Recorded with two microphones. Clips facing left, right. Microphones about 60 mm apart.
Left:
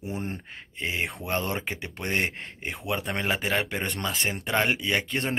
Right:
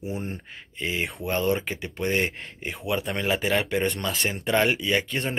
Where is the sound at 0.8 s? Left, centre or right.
Left.